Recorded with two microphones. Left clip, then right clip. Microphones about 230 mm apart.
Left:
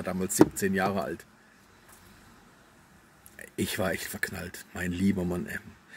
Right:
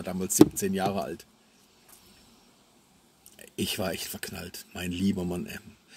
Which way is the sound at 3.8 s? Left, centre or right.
Left.